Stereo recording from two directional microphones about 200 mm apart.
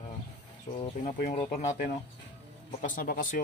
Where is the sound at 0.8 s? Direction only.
35° left (ahead or behind).